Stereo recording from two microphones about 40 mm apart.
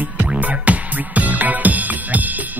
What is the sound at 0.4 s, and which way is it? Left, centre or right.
Music, right.